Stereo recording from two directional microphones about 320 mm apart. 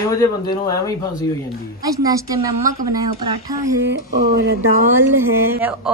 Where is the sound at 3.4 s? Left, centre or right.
Centre.